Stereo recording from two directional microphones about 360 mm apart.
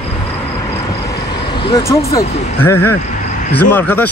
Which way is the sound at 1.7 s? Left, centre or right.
Centre.